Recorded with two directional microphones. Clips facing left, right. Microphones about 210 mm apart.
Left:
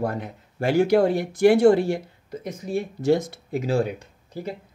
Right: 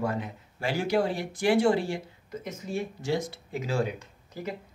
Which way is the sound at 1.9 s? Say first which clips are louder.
Left 4 dB; 35° left (ahead or behind).